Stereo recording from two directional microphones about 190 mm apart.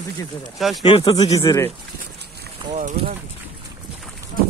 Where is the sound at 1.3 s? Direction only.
15° left (ahead or behind).